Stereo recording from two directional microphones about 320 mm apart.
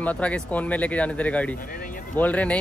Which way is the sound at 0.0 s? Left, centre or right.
Centre.